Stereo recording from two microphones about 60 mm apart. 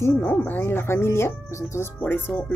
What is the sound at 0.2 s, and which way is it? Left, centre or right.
Speech, left.